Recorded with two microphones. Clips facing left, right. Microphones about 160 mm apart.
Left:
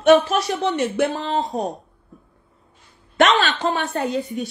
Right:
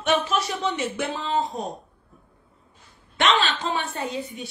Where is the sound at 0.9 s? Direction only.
45° left (ahead or behind).